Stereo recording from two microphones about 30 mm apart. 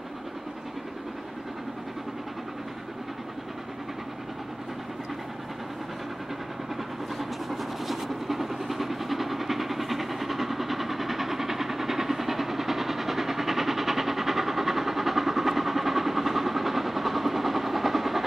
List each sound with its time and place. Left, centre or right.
7.2 s vehicle: centre